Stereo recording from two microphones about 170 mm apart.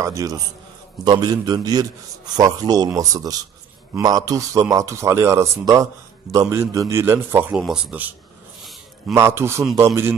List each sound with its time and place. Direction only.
0.0 s a man's voice: 20° right (ahead or behind)
9.1 s a man's voice: 15° right (ahead or behind)